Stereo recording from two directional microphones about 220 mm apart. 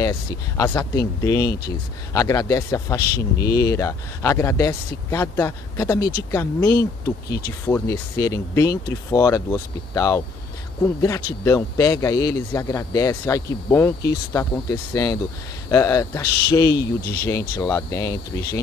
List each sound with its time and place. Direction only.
0.0 s speech: 15° left (ahead or behind)
6.7 s speech: 45° left (ahead or behind)
7.6 s speech: 10° left (ahead or behind)